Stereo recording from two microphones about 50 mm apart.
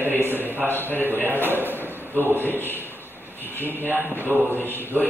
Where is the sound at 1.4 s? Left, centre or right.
Right.